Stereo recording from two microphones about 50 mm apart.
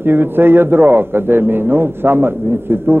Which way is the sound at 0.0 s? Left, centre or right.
Right.